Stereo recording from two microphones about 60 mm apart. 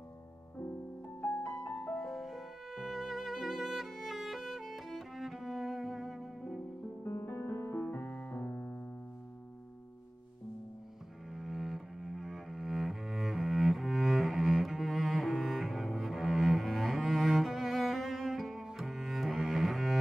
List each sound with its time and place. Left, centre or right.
1.2 s music: left
2.0 s music: centre
7.0 s piano: left
11.3 s cello: centre